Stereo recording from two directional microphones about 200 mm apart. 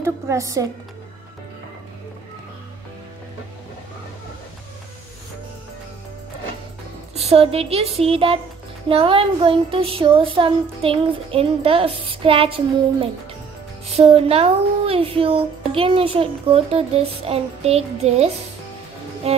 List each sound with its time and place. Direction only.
0.0 s a woman's voice: 15° right (ahead or behind)
7.2 s child singing: 30° right (ahead or behind)
17.2 s a child's voice: 30° right (ahead or behind)